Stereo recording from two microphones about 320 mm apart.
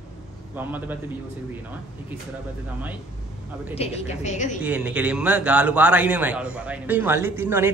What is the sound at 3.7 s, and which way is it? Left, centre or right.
Speech, centre.